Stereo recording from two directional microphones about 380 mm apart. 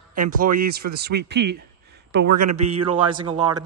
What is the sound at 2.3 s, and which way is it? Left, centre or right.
Speech, right.